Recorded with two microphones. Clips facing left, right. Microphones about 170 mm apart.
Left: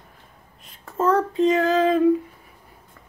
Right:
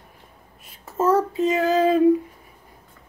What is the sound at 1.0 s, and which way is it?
Child singing, 5° right (ahead or behind).